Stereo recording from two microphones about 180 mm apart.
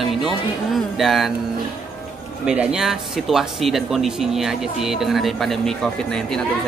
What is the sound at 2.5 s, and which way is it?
A woman's voice, 5° right (ahead or behind).